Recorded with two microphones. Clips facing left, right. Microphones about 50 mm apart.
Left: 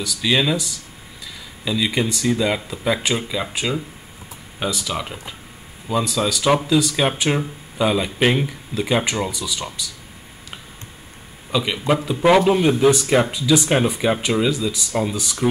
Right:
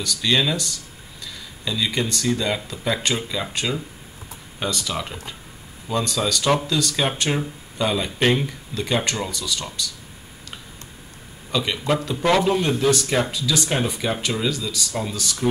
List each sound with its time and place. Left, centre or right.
0.0 s speech: centre
11.5 s speech: centre